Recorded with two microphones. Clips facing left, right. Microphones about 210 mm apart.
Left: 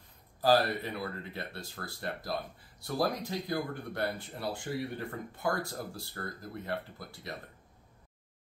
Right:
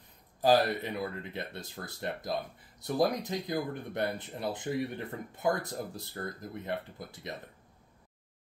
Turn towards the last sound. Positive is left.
turn(degrees=-20)  # may be behind; listen again after turning